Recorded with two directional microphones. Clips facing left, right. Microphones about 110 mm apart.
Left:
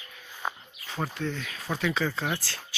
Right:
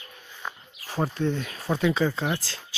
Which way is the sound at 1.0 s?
20° right (ahead or behind).